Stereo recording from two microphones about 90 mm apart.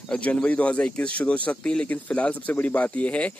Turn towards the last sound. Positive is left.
turn(degrees=15)  # may be behind; listen again after turning